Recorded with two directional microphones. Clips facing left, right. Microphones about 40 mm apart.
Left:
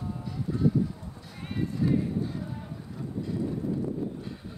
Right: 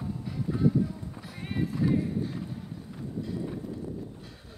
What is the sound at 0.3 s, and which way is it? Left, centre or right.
Music, centre.